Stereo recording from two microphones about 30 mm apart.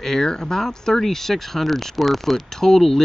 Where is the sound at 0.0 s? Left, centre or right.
Centre.